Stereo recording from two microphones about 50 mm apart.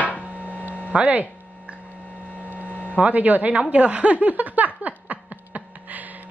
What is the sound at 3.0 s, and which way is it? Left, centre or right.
Speech, right.